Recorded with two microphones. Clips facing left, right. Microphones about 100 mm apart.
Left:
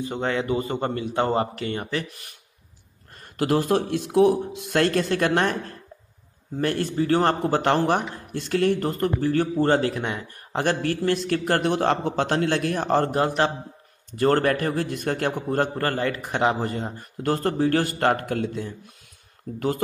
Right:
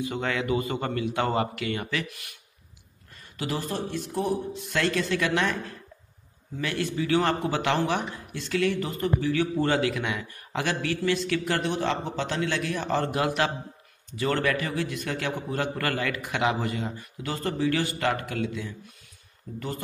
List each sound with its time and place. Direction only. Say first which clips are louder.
0.0 s a man's voice: left 3 dB; 30° left (ahead or behind)
3.3 s speech: left 9 dB; 60° left (ahead or behind); by 4.4 s 80° left
4.6 s speech: left 5 dB; 60° left (ahead or behind); by 13.5 s 35° left (ahead or behind)
14.1 s speech: left 6 dB; 50° left (ahead or behind)
15.7 s speech: left 4 dB; 35° left (ahead or behind)